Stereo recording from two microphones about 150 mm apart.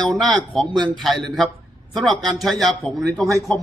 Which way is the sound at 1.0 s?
Centre (ahead or behind).